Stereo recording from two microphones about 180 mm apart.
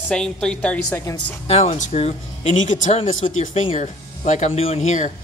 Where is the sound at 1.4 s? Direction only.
40° left (ahead or behind).